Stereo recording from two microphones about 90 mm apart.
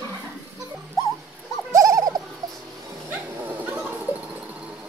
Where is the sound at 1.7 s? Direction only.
40° right (ahead or behind).